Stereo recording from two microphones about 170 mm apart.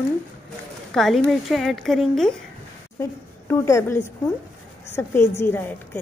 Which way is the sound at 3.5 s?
15° left (ahead or behind).